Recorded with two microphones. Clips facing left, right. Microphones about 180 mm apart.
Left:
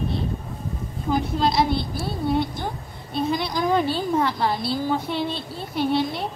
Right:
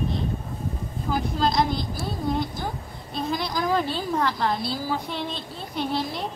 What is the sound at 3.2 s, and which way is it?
A child's voice, centre (ahead or behind).